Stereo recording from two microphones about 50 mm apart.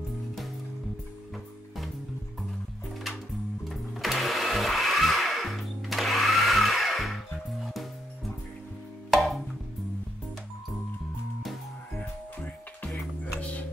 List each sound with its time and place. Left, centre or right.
3.6 s blender: centre
7.6 s music: centre
9.1 s music: centre
12.0 s music: left